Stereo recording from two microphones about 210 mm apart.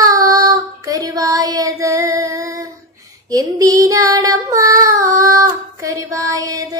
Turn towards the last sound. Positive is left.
turn(degrees=-15)  # may be behind; listen again after turning